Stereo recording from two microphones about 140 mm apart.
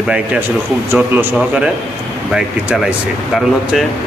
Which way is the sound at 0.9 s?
10° right (ahead or behind).